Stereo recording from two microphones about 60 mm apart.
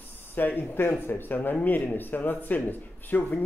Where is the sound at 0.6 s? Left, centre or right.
Left.